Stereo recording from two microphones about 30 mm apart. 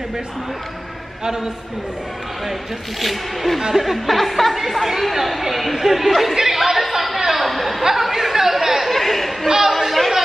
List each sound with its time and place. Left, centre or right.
1.2 s a man's voice: centre
3.0 s speech: centre
6.3 s chatter: centre
8.9 s chatter: centre
9.5 s chatter: centre
9.9 s chatter: centre